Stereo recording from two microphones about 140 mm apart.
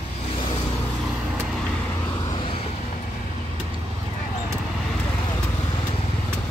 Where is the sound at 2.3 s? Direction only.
40° left (ahead or behind).